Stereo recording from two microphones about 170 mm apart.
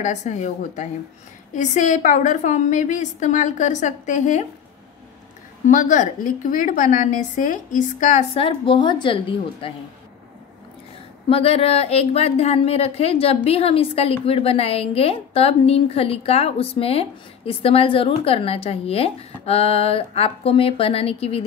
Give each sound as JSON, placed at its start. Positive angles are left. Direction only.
{"t": 0.0, "sound": "a woman's voice", "side_deg": 45}
{"t": 5.7, "sound": "a woman's voice", "side_deg": 50}
{"t": 11.2, "sound": "speech", "side_deg": 35}